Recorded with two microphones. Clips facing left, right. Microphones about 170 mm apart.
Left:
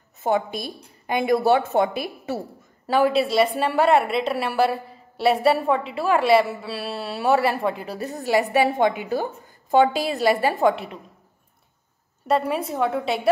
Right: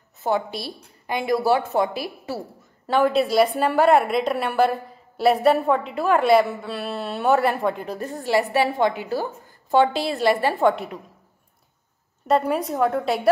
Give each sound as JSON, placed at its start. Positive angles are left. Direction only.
{"t": 0.2, "sound": "a woman's voice", "side_deg": 20}
{"t": 2.9, "sound": "a woman's voice", "side_deg": 5}
{"t": 8.3, "sound": "a woman's voice", "side_deg": 15}
{"t": 12.3, "sound": "a woman's voice", "side_deg": 0}